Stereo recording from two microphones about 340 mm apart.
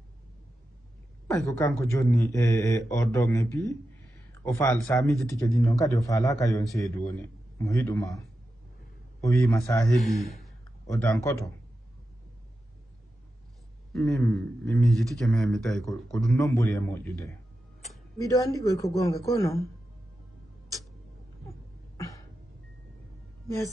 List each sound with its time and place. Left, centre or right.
1.2 s speech: centre
9.2 s speech: centre
10.0 s speech: centre
10.4 s a sound: centre
13.9 s speech: centre